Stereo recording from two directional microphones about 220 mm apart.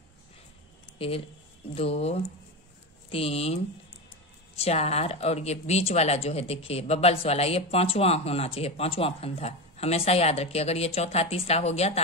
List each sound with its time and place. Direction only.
0.9 s speech: 25° left (ahead or behind)